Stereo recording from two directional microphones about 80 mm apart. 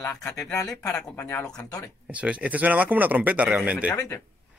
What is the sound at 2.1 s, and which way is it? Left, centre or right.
Speech, centre.